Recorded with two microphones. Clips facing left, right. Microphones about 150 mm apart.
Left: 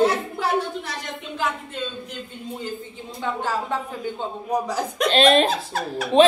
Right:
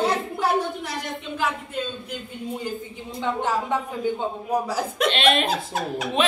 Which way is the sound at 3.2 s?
20° right (ahead or behind).